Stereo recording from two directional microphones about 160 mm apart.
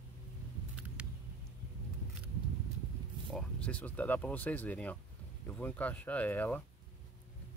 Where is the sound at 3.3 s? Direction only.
5° left (ahead or behind).